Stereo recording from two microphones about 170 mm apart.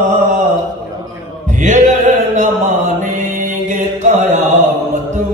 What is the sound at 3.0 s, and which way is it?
Mantra, 50° right (ahead or behind).